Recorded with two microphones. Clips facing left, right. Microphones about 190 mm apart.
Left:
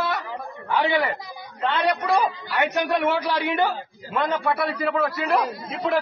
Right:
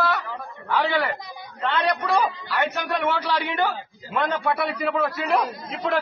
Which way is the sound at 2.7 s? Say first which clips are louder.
Left 3 dB; 15° left (ahead or behind).